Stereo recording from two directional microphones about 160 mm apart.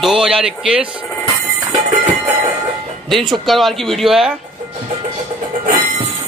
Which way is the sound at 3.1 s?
30° right (ahead or behind).